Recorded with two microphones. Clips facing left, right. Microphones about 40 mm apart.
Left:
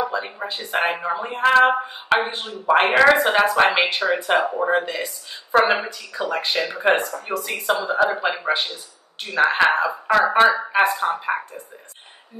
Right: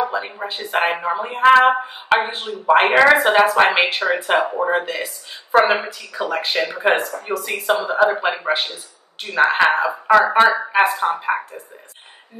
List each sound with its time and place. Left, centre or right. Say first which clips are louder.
0.0 s a woman's voice: right 2 dB; centre
5.9 s a woman's voice: right 2 dB; right